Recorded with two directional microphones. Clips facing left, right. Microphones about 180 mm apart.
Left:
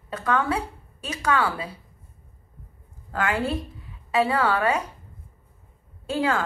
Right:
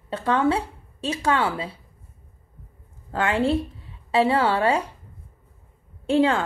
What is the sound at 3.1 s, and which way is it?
A woman's voice, 25° right (ahead or behind).